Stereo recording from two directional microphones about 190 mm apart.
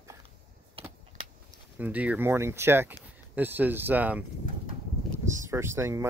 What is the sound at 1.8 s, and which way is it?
Speech, 10° right (ahead or behind).